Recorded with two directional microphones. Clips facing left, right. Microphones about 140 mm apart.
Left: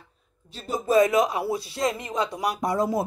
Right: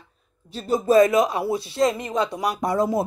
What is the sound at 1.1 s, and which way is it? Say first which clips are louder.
Speech: right 2 dB; 25° right (ahead or behind).